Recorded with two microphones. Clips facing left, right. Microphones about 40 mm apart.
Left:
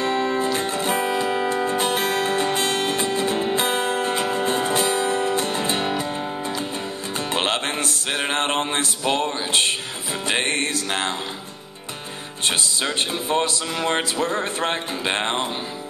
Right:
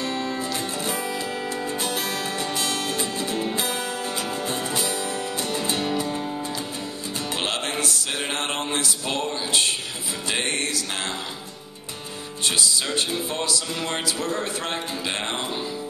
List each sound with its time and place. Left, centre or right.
0.0 s music: left
12.4 s music: left